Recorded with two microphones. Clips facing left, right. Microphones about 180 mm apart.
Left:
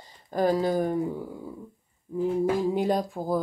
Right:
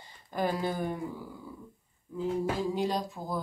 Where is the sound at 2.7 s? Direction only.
55° left (ahead or behind).